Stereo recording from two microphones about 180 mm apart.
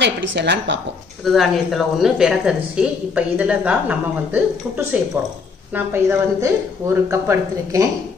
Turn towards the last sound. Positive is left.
turn(degrees=-15)  # may be behind; listen again after turning